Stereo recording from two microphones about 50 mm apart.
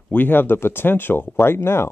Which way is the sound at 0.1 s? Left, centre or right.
Left.